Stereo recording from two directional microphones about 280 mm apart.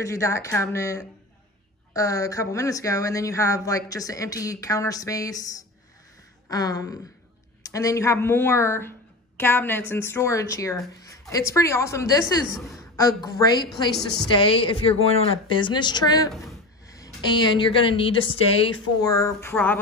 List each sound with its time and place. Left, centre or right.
0.0 s a woman's voice: centre
16.3 s speech: centre
16.8 s speech: centre